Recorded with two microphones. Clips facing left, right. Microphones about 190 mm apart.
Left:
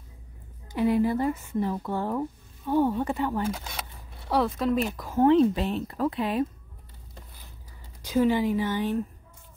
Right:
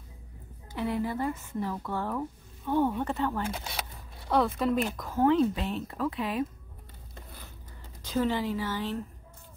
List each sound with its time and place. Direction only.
0.7 s speech: 15° left (ahead or behind)
3.5 s speech: 5° right (ahead or behind)
5.1 s speech: 25° left (ahead or behind)
8.0 s speech: 10° left (ahead or behind)